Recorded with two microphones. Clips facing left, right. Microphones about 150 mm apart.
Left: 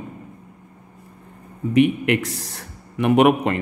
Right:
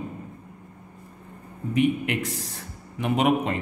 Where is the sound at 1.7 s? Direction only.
70° left (ahead or behind).